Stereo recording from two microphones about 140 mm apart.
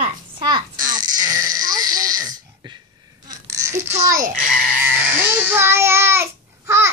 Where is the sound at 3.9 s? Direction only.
60° right (ahead or behind).